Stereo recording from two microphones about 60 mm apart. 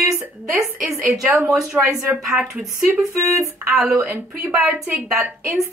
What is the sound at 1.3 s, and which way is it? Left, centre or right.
Speech, right.